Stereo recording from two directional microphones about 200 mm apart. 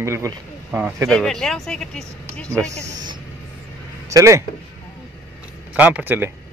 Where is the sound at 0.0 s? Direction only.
15° right (ahead or behind).